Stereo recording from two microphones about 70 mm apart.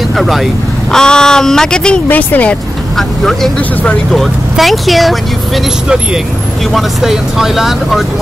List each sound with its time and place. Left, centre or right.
0.2 s speech: centre
0.9 s speech: centre
2.0 s speech: left
3.0 s speech: centre
6.7 s speech: centre